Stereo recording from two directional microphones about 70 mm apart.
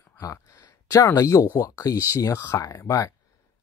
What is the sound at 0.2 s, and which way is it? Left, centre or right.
Speech, left.